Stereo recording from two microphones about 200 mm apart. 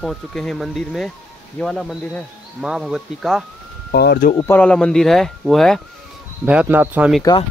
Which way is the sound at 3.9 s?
55° left (ahead or behind).